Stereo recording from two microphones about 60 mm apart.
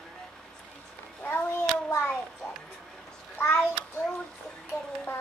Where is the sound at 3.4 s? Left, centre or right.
Left.